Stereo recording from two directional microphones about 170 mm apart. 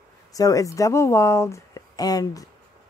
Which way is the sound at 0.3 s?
20° left (ahead or behind).